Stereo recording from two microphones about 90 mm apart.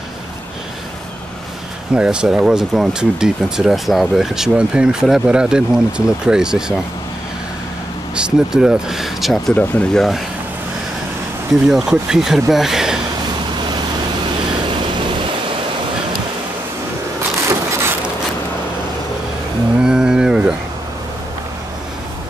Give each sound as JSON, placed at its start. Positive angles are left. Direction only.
{"t": 2.0, "sound": "speech", "side_deg": -10}
{"t": 8.2, "sound": "speech", "side_deg": -5}
{"t": 9.5, "sound": "speech", "side_deg": 15}
{"t": 9.9, "sound": "speech", "side_deg": 0}
{"t": 11.6, "sound": "speech", "side_deg": -5}
{"t": 19.8, "sound": "cattle", "side_deg": -10}